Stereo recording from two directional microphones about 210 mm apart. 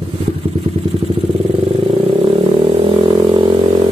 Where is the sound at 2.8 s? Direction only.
25° right (ahead or behind).